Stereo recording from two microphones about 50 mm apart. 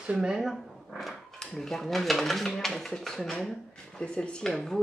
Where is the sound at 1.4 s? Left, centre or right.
Centre.